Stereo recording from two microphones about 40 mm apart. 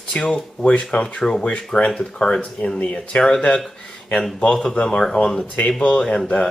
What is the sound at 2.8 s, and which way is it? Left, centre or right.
Speech, left.